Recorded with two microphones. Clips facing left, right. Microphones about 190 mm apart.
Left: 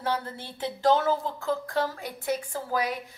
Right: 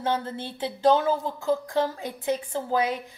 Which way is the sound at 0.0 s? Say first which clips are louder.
Right 3 dB; 20° right (ahead or behind).